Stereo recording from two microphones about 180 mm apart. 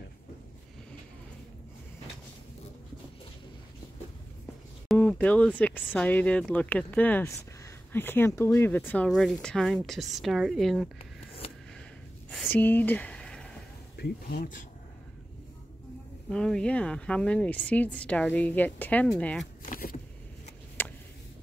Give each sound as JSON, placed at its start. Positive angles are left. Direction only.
{"t": 4.8, "sound": "a woman's voice", "side_deg": 5}
{"t": 12.4, "sound": "a sound", "side_deg": 10}
{"t": 13.9, "sound": "speech", "side_deg": 65}
{"t": 16.3, "sound": "a woman's voice", "side_deg": 5}
{"t": 19.6, "sound": "vehicle", "side_deg": 50}
{"t": 20.8, "sound": "a sound", "side_deg": 10}